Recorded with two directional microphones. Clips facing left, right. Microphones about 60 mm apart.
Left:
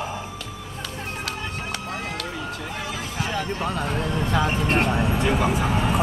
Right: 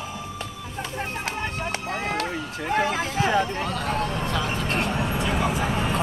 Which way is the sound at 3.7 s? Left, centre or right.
Centre.